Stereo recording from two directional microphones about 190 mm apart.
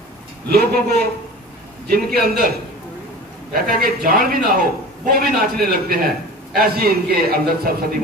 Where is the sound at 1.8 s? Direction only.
50° right (ahead or behind).